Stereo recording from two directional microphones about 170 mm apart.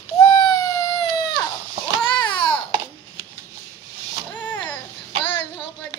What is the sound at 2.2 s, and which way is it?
Babbling, 30° left (ahead or behind).